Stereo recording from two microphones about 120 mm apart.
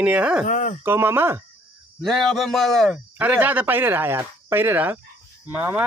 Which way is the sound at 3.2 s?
15° right (ahead or behind).